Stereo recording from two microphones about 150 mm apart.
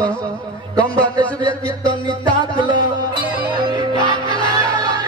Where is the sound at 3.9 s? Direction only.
30° right (ahead or behind).